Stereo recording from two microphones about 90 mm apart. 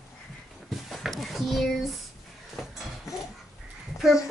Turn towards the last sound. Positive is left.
turn(degrees=0)  # may be behind; listen again after turning